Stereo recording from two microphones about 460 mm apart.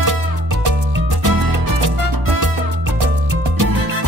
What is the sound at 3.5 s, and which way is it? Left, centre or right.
Music, right.